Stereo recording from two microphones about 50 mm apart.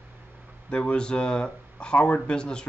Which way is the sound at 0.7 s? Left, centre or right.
Centre.